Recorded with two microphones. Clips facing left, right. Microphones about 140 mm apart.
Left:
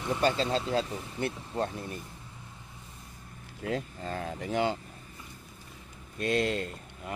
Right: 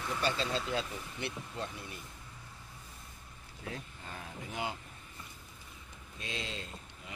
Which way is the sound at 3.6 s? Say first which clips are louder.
Left 11 dB; 90° left.